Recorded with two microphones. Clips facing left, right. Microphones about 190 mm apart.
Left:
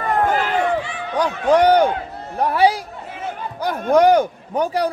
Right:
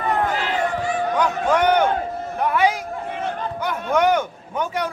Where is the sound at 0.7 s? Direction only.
45° right (ahead or behind).